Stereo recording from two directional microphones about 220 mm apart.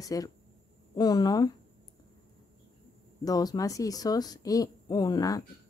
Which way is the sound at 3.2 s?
15° left (ahead or behind).